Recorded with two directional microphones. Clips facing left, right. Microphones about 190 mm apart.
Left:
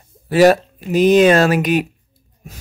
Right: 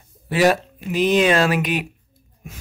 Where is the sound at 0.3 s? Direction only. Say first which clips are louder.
Left 6 dB; 40° left (ahead or behind).